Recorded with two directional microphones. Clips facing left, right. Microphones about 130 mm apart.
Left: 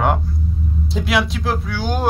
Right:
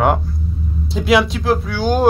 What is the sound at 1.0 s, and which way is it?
Speech, centre (ahead or behind).